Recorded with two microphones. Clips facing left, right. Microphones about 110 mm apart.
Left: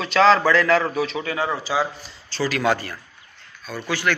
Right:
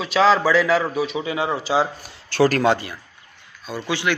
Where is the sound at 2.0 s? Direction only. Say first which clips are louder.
Right 8 dB; 55° right (ahead or behind).